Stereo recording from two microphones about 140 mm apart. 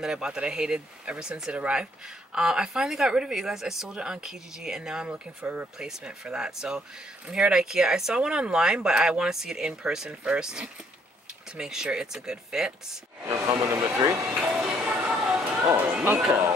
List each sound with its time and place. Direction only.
0.0 s speech: 5° right (ahead or behind)
13.3 s speech: 20° right (ahead or behind)
14.3 s music: 10° right (ahead or behind)